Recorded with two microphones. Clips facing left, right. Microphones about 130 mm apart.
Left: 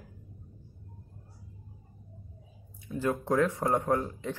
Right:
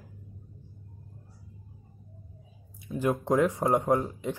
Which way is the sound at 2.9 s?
20° right (ahead or behind).